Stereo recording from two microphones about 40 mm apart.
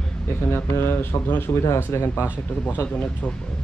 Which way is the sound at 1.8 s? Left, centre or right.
Left.